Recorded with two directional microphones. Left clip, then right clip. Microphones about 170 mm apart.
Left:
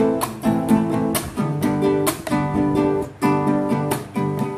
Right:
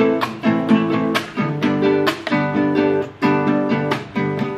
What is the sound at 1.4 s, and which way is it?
Music, 5° right (ahead or behind).